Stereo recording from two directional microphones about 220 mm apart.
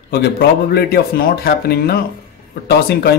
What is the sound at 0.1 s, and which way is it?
Speech, 45° left (ahead or behind).